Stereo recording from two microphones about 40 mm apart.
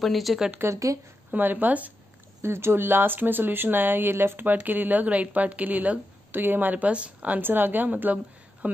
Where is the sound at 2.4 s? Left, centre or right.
Right.